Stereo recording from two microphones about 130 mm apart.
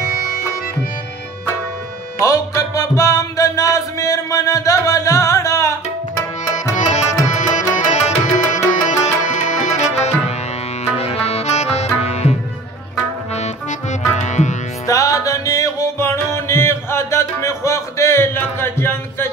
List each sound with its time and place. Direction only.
2.2 s music: 25° left (ahead or behind)
6.8 s tabla: 65° left (ahead or behind)
8.8 s music: 70° left (ahead or behind)
11.0 s tabla: 55° left (ahead or behind)
13.3 s accordion: 60° left (ahead or behind)
14.1 s music: 65° left (ahead or behind)
14.9 s music: 25° left (ahead or behind)